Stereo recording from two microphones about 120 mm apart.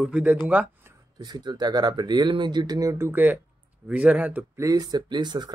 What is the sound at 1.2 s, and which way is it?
A man's voice, 35° right (ahead or behind).